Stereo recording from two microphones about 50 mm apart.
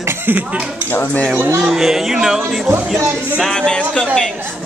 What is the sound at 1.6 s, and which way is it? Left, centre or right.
Music, centre.